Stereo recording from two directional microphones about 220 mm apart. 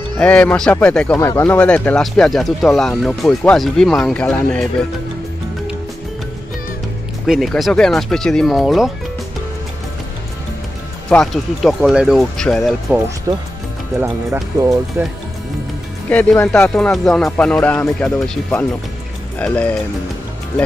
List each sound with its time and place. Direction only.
0.2 s speech: 5° left (ahead or behind)
7.2 s speech: centre (ahead or behind)
11.1 s speech: centre (ahead or behind)
13.3 s speech: 20° right (ahead or behind)
16.1 s speech: 5° left (ahead or behind)